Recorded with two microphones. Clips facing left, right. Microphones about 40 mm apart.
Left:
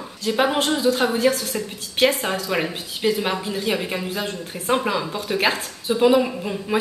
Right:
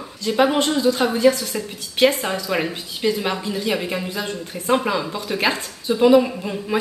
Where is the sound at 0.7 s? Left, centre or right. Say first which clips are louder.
Right 1 dB; centre.